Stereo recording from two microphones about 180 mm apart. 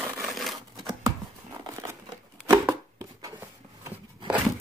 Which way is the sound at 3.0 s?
20° right (ahead or behind).